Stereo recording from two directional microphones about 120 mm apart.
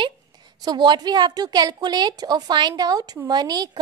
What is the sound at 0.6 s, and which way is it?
A woman's voice, 35° right (ahead or behind).